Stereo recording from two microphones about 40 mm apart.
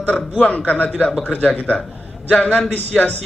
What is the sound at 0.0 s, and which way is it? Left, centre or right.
A man's voice, left.